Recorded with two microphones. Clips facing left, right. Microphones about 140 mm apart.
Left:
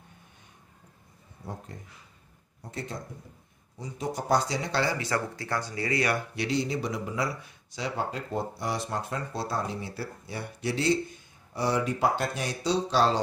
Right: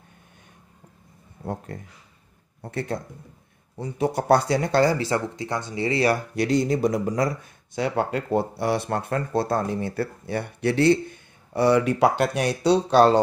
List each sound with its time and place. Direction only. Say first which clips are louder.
1.4 s speech: right 9 dB; 65° right (ahead or behind)
4.9 s speech: right 5 dB; 25° right (ahead or behind)
6.3 s speech: right 7 dB; 45° right (ahead or behind)